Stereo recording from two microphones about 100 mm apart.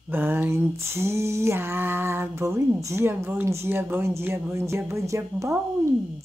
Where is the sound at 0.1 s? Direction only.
20° right (ahead or behind).